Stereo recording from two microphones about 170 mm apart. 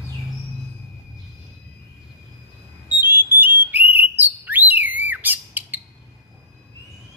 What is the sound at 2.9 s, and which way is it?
Alarm, 10° right (ahead or behind).